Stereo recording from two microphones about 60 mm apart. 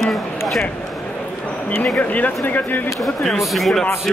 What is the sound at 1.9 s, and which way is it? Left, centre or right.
Speech, left.